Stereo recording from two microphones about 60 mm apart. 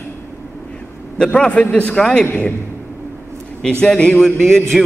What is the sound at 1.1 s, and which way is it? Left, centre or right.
A man's voice, centre.